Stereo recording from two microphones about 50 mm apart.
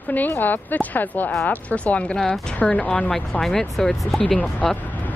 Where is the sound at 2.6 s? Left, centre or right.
Left.